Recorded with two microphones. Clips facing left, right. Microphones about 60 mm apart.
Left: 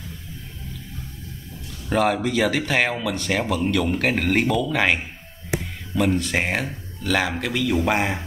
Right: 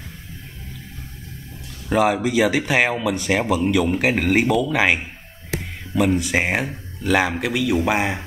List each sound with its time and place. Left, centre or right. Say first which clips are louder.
1.9 s speech: right 2 dB; centre